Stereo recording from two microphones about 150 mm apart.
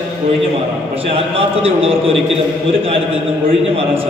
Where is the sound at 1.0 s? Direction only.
40° right (ahead or behind).